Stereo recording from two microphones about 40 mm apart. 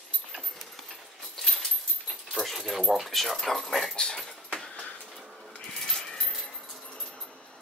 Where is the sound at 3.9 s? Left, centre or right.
Centre.